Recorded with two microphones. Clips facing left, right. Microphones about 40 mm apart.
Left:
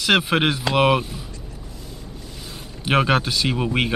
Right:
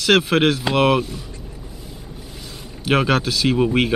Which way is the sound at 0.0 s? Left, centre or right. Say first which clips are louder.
Right 3 dB; centre.